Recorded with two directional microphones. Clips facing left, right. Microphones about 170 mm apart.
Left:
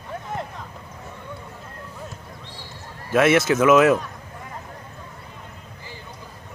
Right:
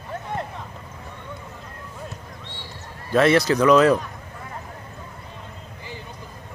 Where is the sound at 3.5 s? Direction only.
5° left (ahead or behind).